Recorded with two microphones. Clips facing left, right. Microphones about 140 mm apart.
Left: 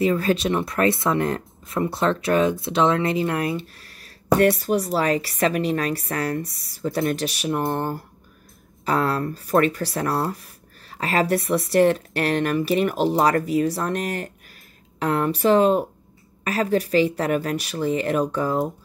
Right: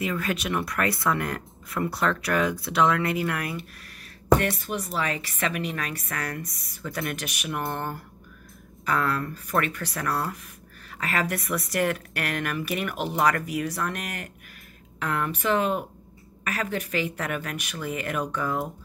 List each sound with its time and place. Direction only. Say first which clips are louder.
0.0 s speech: left 8 dB; 30° left (ahead or behind)
4.4 s a woman's voice: left 10 dB; 40° left (ahead or behind)